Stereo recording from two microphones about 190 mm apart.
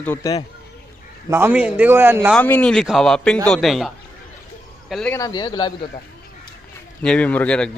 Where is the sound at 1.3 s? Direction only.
10° right (ahead or behind).